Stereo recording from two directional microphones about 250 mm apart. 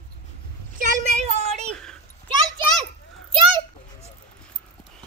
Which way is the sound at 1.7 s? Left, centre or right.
Centre.